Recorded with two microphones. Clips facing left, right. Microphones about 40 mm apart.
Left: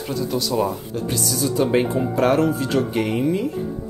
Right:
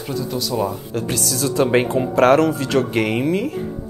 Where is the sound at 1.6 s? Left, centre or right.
Right.